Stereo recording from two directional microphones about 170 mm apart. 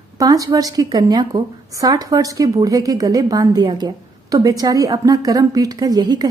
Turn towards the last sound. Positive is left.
turn(degrees=-25)  # may be behind; listen again after turning